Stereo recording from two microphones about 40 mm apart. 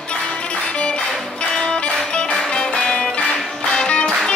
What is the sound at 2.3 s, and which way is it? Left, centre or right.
Music, centre.